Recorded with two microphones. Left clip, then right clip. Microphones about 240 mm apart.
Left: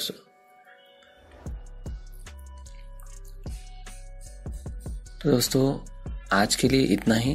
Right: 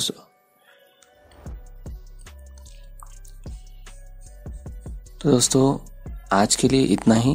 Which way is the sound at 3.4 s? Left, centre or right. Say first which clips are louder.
Left 2 dB; centre.